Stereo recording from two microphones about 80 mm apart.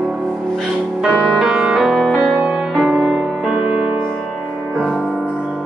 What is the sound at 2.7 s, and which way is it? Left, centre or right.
Music, centre.